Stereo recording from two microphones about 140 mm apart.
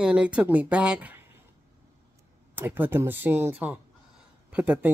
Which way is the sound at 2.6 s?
15° right (ahead or behind).